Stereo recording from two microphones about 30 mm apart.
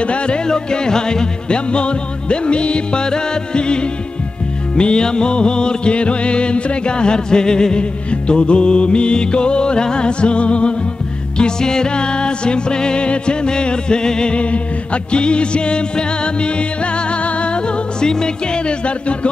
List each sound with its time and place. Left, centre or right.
0.0 s speech: left
0.5 s music: left
8.1 s music: left
11.3 s music: left
14.3 s music: left
18.0 s music: left
18.9 s music: left